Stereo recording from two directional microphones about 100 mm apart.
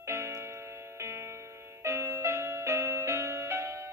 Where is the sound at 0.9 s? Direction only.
25° right (ahead or behind).